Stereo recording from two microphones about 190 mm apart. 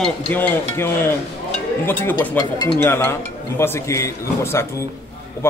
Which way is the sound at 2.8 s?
10° left (ahead or behind).